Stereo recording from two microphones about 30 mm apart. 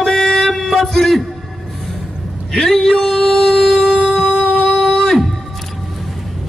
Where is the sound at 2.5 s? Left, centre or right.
Centre.